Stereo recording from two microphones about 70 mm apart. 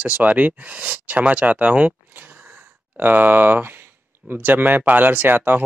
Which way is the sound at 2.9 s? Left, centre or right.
Right.